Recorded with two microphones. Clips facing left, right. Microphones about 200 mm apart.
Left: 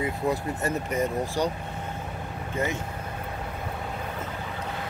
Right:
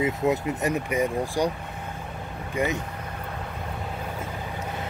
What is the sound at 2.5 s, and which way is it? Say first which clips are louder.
Speech: right 3 dB; 15° right (ahead or behind).